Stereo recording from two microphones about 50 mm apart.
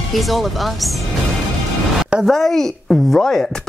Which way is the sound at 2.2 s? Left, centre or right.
Centre.